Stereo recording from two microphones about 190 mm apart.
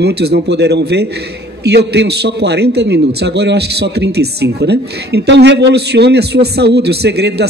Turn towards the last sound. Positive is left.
turn(degrees=-60)  # may be behind; listen again after turning